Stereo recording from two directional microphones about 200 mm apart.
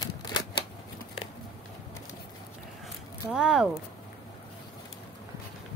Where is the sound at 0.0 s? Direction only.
20° left (ahead or behind).